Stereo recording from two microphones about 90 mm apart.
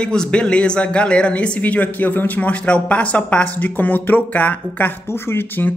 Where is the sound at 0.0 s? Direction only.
10° left (ahead or behind).